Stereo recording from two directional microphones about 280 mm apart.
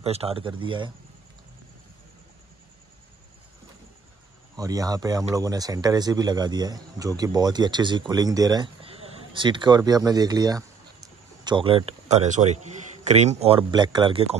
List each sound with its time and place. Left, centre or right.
0.0 s speech: right
4.6 s speech: centre